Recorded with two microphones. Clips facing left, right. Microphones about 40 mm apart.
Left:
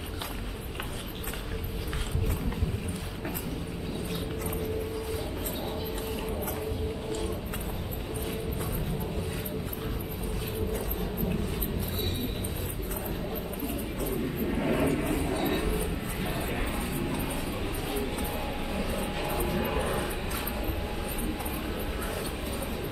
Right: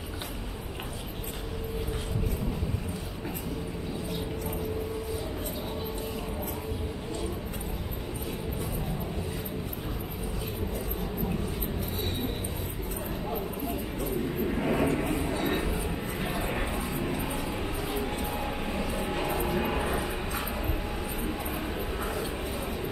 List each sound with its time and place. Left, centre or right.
14.4 s vehicle: centre
15.2 s a sound: centre
18.2 s vehicle: centre